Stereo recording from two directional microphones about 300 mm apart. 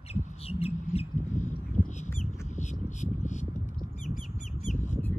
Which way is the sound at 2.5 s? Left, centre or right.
Left.